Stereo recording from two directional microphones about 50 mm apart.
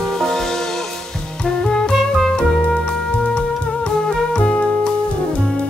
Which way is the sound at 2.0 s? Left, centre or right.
Centre.